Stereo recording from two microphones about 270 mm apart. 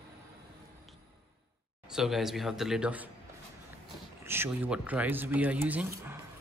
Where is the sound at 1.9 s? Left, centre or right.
Centre.